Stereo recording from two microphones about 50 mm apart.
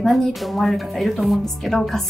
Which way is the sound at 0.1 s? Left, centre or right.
Centre.